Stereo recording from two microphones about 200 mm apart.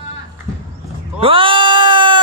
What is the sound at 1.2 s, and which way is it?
Speech, 25° right (ahead or behind).